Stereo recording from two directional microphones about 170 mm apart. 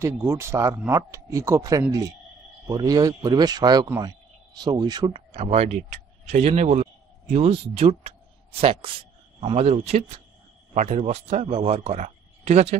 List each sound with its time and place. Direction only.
0.0 s a man's voice: 15° right (ahead or behind); by 12.7 s 40° right (ahead or behind)